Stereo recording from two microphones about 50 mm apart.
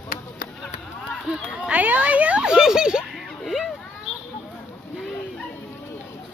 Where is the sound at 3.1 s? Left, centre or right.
Centre.